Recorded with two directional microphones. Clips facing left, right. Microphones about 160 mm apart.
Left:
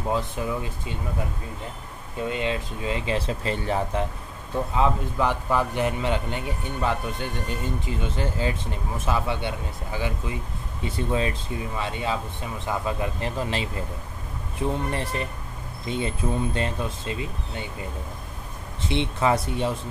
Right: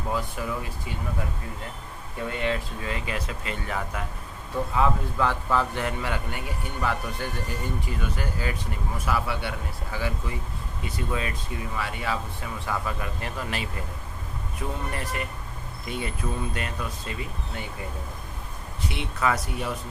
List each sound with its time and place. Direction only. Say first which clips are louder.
0.1 s a man's voice: left 3 dB; 25° left (ahead or behind)
2.2 s a man's voice: left 1 dB; 20° left (ahead or behind)
4.7 s a man's voice: left 1 dB; 15° left (ahead or behind)
14.9 s a man's voice: left 3 dB; 30° left (ahead or behind)
18.9 s a man's voice: left 4 dB; 25° left (ahead or behind)